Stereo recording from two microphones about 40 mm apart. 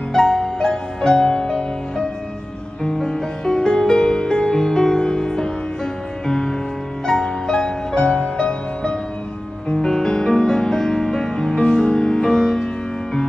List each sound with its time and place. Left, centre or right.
0.1 s music: centre